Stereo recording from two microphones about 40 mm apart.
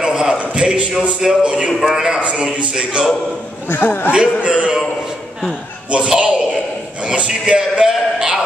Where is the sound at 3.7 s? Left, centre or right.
Left.